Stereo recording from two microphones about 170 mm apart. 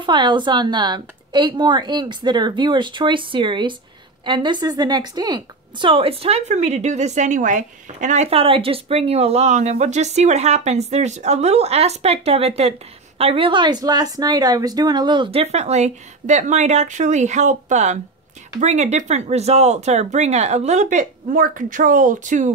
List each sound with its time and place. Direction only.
0.0 s a woman's voice: 25° right (ahead or behind); by 22.5 s 45° right (ahead or behind)